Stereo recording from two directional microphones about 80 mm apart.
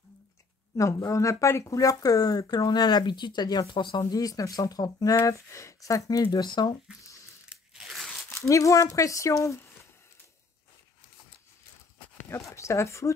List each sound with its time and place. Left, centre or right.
0.7 s speech: left
4.0 s speech: left
6.3 s speech: left
7.4 s a sound: centre
8.3 s speech: left
12.4 s speech: left